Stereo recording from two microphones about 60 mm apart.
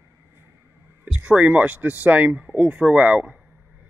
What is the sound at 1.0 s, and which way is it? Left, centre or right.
Speech, right.